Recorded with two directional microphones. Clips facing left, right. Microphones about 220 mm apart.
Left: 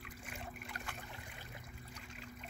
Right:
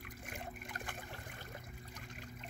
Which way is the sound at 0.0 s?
55° right (ahead or behind).